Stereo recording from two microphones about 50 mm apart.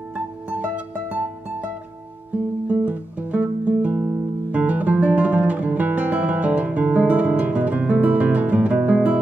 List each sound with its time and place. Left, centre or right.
0.5 s music: right
4.0 s guitar: right
8.9 s music: right